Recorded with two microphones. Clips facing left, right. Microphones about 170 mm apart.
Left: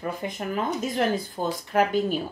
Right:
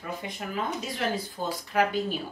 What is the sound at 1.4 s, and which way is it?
Speech, 45° left (ahead or behind).